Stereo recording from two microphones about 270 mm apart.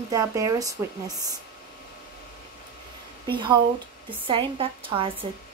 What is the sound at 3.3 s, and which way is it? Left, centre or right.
A woman's voice, centre.